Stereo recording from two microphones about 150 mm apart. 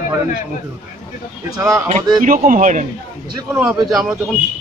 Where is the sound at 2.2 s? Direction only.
60° right (ahead or behind).